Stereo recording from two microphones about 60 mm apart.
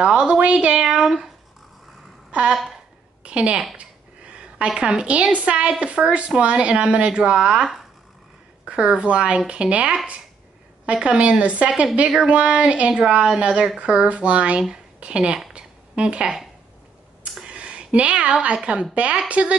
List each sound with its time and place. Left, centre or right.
0.0 s a woman's voice: centre
0.7 s a woman's voice: centre
2.5 s speech: centre
3.3 s a woman's voice: centre
15.5 s a sound: centre
17.4 s a woman's voice: centre